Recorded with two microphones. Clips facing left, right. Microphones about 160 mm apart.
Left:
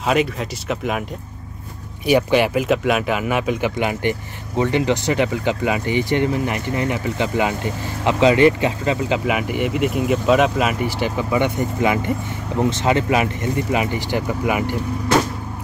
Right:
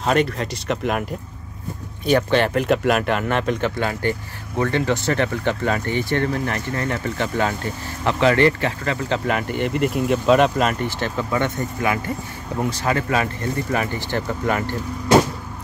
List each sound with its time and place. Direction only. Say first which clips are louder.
0.0 s speech: even; 5° left (ahead or behind)
2.0 s speech: left 2 dB; 10° left (ahead or behind)